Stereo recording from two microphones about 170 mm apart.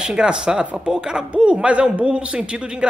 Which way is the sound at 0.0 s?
5° right (ahead or behind).